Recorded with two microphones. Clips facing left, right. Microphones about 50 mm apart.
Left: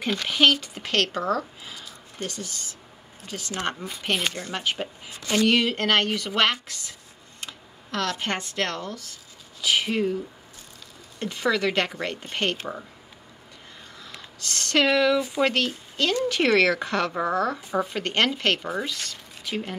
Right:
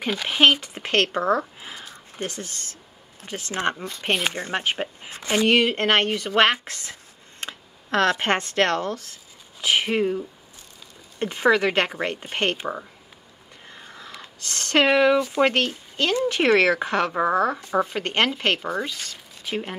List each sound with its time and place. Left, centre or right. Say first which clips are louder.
0.0 s speech: right 1 dB; centre
0.3 s speech: right 3 dB; right
1.6 s a sound: right 2 dB; right
2.4 s speech: even; right
3.3 s speech: right 4 dB; right
4.0 s speech: right 2 dB; centre
4.3 s speech: right 3 dB; right
6.7 s computer keyboard: right 3 dB; right
9.6 s speech: right 2 dB; right
14.4 s speech: right 2 dB; right
18.9 s a sound: left 1 dB; centre